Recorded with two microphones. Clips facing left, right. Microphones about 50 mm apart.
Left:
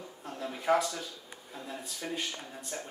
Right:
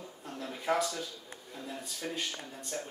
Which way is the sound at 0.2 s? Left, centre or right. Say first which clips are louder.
Left 3 dB; centre.